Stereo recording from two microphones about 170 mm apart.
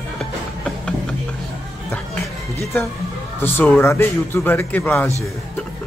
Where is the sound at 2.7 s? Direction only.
10° left (ahead or behind).